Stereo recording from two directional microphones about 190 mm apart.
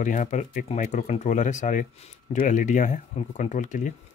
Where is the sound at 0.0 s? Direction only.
40° left (ahead or behind).